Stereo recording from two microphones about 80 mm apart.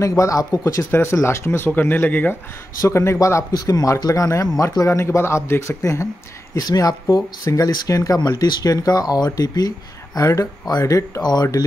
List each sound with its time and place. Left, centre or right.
0.0 s speech: left
2.9 s speech: left
6.5 s speech: left